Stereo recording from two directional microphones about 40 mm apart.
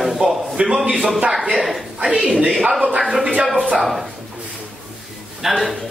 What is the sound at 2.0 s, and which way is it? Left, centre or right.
Speech, centre.